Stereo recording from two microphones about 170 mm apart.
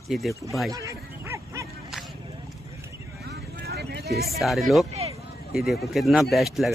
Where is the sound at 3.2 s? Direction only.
70° right (ahead or behind).